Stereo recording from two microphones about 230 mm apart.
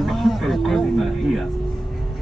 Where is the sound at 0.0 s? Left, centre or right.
Centre.